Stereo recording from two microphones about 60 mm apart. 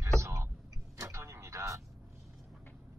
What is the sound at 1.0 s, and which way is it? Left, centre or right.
Vehicle, right.